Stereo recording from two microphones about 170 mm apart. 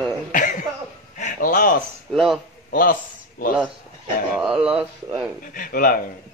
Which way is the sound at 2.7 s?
55° left (ahead or behind).